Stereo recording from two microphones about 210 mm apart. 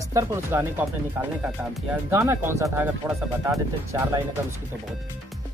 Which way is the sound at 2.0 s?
10° right (ahead or behind).